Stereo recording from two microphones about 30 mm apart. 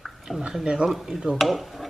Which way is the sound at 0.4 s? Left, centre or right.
Right.